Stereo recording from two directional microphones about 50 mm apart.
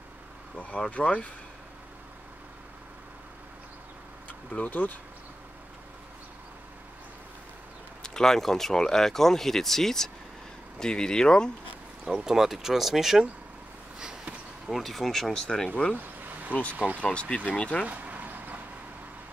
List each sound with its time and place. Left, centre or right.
0.6 s speech: left
4.5 s speech: left
8.0 s speech: centre
12.0 s speech: centre
14.7 s speech: centre
16.0 s a sound: right
16.7 s speech: right
17.0 s speech: left
17.8 s vehicle: right